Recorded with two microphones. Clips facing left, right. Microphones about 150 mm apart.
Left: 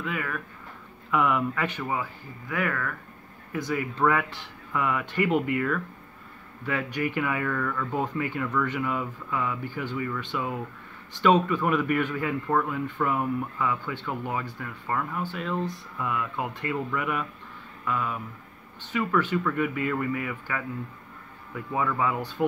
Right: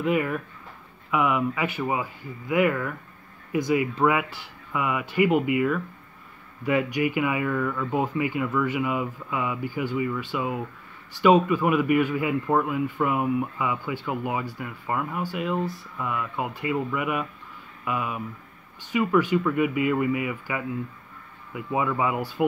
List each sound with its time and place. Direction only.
0.0 s speech: 20° right (ahead or behind)
1.1 s speech: 5° right (ahead or behind)